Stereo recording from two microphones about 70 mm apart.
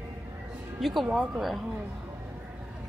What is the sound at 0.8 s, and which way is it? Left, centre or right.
Speech, centre.